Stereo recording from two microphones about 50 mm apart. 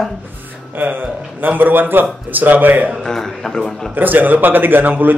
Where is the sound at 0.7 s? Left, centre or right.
Right.